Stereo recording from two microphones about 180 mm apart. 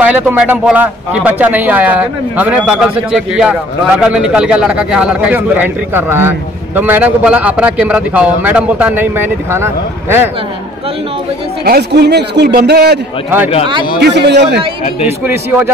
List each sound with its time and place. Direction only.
0.0 s speech: 10° right (ahead or behind)
11.6 s a man's voice: 60° right (ahead or behind)
14.0 s a man's voice: 70° right (ahead or behind)
15.0 s speech: 10° right (ahead or behind)